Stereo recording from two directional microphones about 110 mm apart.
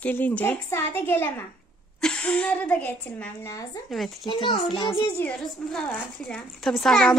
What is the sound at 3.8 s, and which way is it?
Speech, centre (ahead or behind).